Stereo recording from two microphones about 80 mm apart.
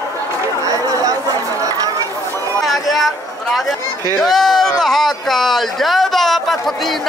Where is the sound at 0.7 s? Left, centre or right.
Right.